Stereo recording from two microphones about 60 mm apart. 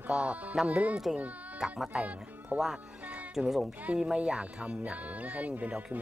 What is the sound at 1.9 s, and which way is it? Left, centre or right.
Speech, right.